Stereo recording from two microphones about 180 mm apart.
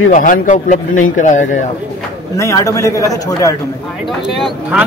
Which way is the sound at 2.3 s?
15° left (ahead or behind).